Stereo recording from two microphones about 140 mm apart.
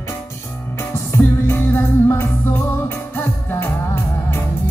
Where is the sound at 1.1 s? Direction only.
15° left (ahead or behind).